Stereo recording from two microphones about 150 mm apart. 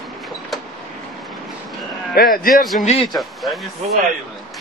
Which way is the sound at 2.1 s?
80° left.